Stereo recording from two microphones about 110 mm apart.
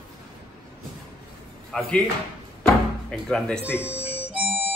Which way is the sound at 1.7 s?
5° left (ahead or behind).